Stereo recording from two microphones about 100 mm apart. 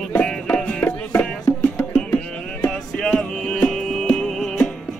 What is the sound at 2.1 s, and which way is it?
Music, 10° left (ahead or behind).